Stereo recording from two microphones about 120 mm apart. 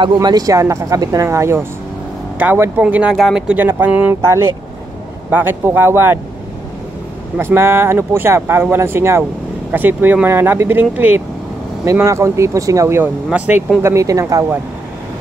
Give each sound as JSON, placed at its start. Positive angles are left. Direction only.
{"t": 0.0, "sound": "speech", "side_deg": -35}
{"t": 7.3, "sound": "speech", "side_deg": -20}
{"t": 11.8, "sound": "speech", "side_deg": -25}
{"t": 13.8, "sound": "speech", "side_deg": -25}